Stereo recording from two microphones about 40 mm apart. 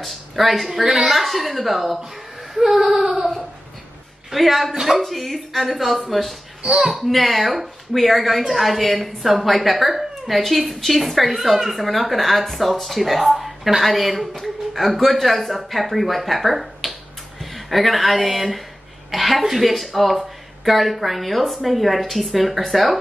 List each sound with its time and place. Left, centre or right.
0.0 s a woman's voice: centre
4.3 s a woman's voice: centre
6.6 s speech: centre
6.9 s a woman's voice: centre